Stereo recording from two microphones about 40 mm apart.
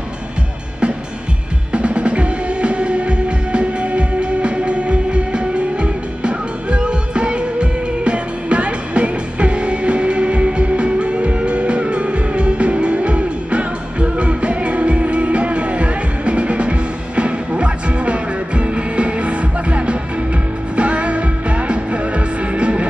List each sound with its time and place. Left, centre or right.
1.7 s music: right